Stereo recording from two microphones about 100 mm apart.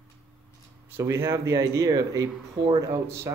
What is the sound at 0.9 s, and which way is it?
Speech, 25° right (ahead or behind).